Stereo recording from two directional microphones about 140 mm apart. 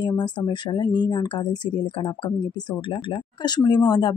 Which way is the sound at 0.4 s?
30° left (ahead or behind).